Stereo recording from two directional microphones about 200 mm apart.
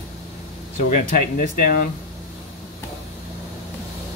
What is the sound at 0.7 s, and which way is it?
Speech, 45° left (ahead or behind).